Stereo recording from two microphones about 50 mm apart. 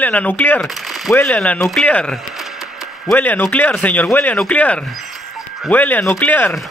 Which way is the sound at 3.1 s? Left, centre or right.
Left.